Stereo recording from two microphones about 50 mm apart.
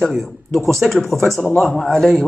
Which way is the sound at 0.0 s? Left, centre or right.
Centre.